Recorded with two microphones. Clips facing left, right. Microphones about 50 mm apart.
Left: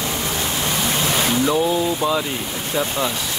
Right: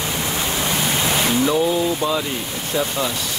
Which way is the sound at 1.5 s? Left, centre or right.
Centre.